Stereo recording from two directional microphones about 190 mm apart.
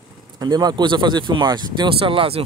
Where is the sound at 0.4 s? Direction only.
20° right (ahead or behind).